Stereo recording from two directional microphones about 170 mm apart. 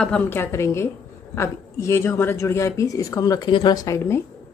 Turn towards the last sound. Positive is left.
turn(degrees=15)  # may be behind; listen again after turning